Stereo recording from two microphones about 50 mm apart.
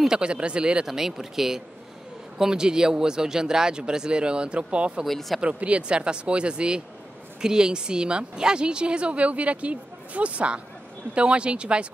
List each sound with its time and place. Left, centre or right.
0.1 s speech: centre
5.0 s speech: centre
5.4 s speech: right